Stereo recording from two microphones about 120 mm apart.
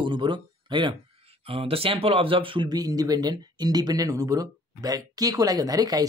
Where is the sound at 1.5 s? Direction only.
50° right (ahead or behind).